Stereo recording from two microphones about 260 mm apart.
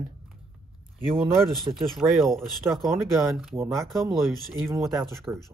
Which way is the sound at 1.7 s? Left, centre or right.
Centre.